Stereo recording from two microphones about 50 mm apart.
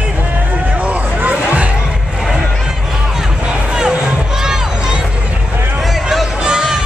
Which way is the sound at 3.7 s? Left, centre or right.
Centre.